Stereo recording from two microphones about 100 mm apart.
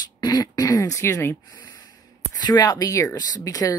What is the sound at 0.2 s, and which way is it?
Speech, 45° left (ahead or behind).